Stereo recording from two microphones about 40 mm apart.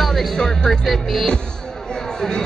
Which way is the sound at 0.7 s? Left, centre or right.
Centre.